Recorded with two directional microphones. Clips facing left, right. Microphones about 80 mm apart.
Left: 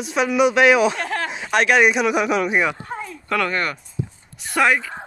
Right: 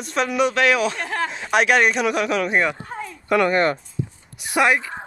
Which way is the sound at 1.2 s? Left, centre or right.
Centre.